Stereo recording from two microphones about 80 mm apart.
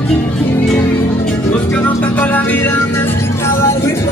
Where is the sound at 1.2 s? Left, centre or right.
Centre.